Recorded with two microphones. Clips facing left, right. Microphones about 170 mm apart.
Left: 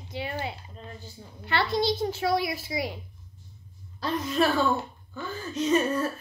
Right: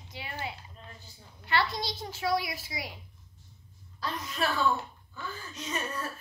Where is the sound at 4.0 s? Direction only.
25° left (ahead or behind).